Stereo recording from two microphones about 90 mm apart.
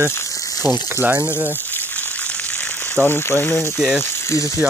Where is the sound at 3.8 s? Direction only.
5° right (ahead or behind).